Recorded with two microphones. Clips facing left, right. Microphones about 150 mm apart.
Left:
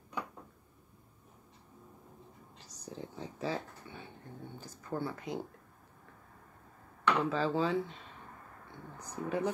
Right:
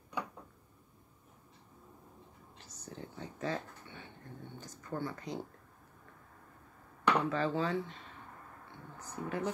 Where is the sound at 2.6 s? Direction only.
10° left (ahead or behind).